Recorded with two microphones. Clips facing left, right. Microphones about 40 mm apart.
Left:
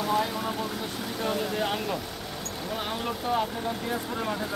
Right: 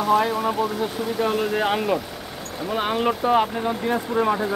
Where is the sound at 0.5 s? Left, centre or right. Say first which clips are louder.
Right 8 dB; centre.